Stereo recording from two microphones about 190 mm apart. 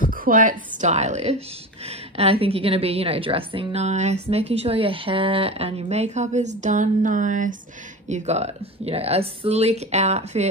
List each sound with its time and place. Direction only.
0.1 s a woman's voice: 45° right (ahead or behind)